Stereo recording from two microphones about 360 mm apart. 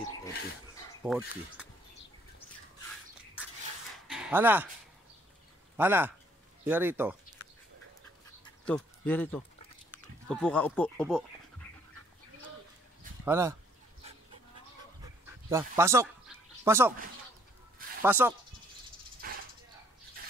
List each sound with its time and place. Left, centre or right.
1.0 s speech: centre
3.4 s a sound: centre
5.8 s speech: centre
8.6 s speech: centre
13.2 s speech: centre
15.5 s speech: centre
18.0 s speech: centre
19.2 s dog: right